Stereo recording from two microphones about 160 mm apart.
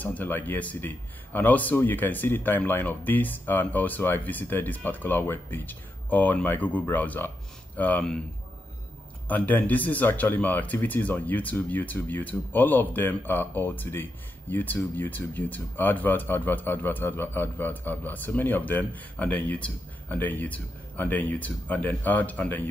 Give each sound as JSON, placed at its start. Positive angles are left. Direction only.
{"t": 0.0, "sound": "speech", "side_deg": 10}
{"t": 9.3, "sound": "speech", "side_deg": 10}